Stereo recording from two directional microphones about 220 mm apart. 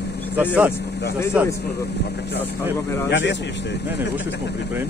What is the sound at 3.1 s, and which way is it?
Speech, 55° left (ahead or behind).